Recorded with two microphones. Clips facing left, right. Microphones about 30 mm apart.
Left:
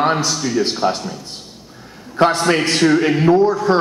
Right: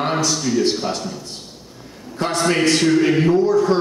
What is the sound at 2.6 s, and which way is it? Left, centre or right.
Speech, centre.